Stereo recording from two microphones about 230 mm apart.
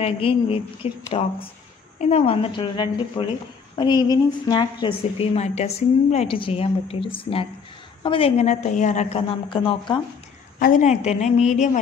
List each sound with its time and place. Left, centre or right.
0.0 s a woman's voice: left
10.6 s a woman's voice: left